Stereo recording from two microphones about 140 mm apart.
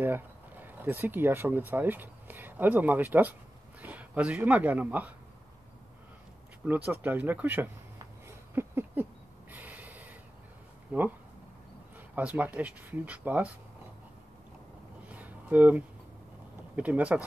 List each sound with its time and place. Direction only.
0.0 s speech: 15° right (ahead or behind)
6.9 s speech: 15° right (ahead or behind)
8.5 s a sound: 15° right (ahead or behind)
9.5 s snort: 10° right (ahead or behind)
10.9 s speech: 15° right (ahead or behind)
12.2 s speech: 10° right (ahead or behind)
15.0 s a sound: 10° right (ahead or behind)
16.7 s speech: 10° right (ahead or behind)